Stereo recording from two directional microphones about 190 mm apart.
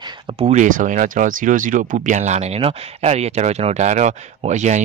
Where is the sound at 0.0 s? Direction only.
30° right (ahead or behind).